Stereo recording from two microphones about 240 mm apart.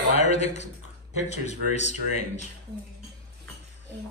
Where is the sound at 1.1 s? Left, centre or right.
Right.